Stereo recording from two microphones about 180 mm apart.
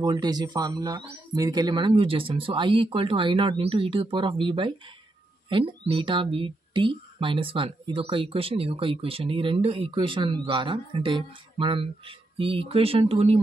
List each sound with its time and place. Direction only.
0.0 s speech: 25° right (ahead or behind)